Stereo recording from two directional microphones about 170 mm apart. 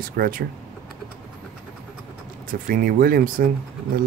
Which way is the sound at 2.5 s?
60° right (ahead or behind).